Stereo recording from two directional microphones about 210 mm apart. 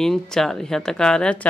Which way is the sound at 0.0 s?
Centre (ahead or behind).